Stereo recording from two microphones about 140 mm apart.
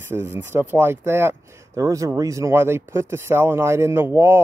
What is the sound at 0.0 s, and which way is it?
Speech, 15° right (ahead or behind).